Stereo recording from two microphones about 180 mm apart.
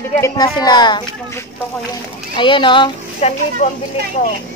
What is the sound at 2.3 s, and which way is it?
A woman's voice, 25° left (ahead or behind).